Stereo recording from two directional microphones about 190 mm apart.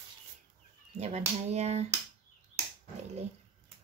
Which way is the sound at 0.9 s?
35° right (ahead or behind).